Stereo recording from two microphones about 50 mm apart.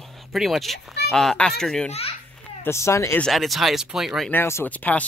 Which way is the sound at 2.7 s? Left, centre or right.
Left.